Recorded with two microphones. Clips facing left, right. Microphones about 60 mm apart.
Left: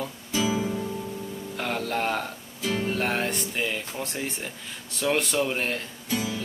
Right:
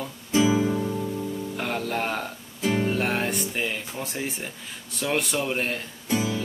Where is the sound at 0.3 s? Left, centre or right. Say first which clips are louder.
Right 5 dB; right.